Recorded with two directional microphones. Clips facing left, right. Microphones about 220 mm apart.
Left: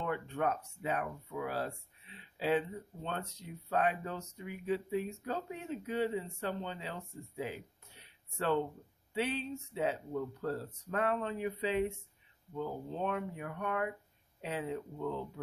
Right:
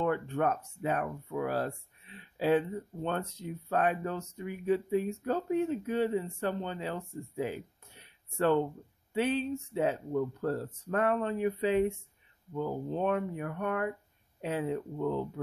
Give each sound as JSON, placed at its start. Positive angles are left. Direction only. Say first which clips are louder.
{"t": 0.0, "sound": "speech", "louder": "right 5 dB", "side_deg": -50}
{"t": 9.1, "sound": "speech", "louder": "right 6 dB", "side_deg": -50}